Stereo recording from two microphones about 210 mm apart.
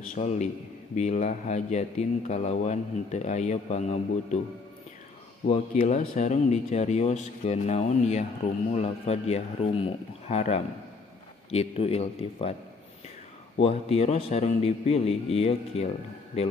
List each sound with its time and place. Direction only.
0.1 s speech: 35° left (ahead or behind)
5.5 s a man's voice: 35° left (ahead or behind)
13.6 s a man's voice: 30° left (ahead or behind)